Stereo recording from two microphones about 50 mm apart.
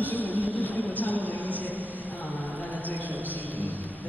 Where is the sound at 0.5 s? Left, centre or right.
Left.